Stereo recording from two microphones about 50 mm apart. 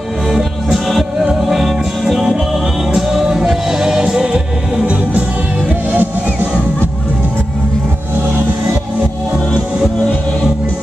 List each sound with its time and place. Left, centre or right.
0.3 s music: centre
5.9 s music: right